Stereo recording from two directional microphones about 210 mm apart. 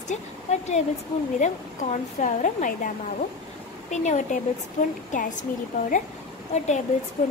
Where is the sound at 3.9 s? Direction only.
35° left (ahead or behind).